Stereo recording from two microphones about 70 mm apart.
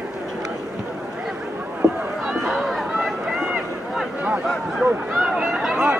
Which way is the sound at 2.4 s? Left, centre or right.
Centre.